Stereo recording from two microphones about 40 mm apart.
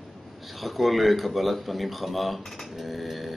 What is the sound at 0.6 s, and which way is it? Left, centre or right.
Speech, centre.